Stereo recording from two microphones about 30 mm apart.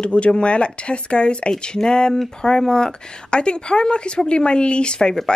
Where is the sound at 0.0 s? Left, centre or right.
Left.